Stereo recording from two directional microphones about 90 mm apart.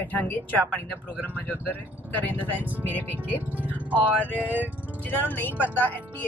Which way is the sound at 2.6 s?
20° right (ahead or behind).